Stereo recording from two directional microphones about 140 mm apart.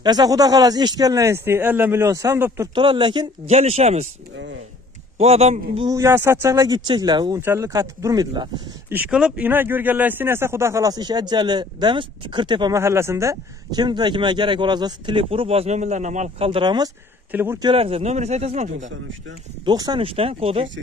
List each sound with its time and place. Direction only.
0.0 s speech: 30° right (ahead or behind)
2.7 s speech: 35° right (ahead or behind)
3.4 s speech: 50° right (ahead or behind)
5.2 s speech: 50° right (ahead or behind)
5.9 s speech: 20° right (ahead or behind)
7.3 s speech: 20° right (ahead or behind)
8.9 s speech: 10° right (ahead or behind); by 12.7 s 35° right (ahead or behind)
12.7 s speech: 20° right (ahead or behind); by 16.4 s 60° right (ahead or behind)
16.4 s speech: 35° right (ahead or behind)
17.3 s speech: 15° right (ahead or behind)
17.6 s speech: 40° right (ahead or behind)
19.6 s speech: 30° right (ahead or behind)
20.2 s speech: 45° right (ahead or behind)